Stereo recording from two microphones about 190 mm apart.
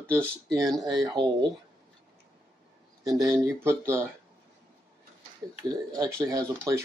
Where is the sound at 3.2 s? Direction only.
15° right (ahead or behind).